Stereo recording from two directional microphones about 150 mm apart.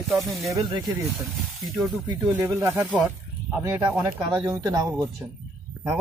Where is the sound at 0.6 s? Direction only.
30° right (ahead or behind).